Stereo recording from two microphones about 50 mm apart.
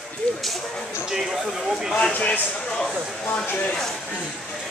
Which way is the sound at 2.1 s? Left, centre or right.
Left.